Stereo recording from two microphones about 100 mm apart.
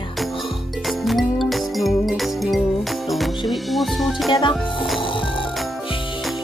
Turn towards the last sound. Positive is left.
turn(degrees=55)  # may be behind; listen again after turning